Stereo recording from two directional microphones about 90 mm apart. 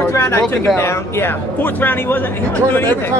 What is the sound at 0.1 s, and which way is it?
Speech, 30° left (ahead or behind).